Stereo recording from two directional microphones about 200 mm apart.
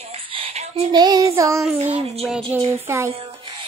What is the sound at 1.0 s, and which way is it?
Child singing, 15° right (ahead or behind).